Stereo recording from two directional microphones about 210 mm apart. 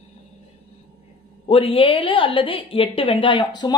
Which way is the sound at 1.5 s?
25° left (ahead or behind).